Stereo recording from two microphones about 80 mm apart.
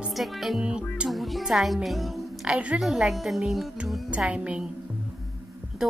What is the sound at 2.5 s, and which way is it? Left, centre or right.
A woman's voice, centre.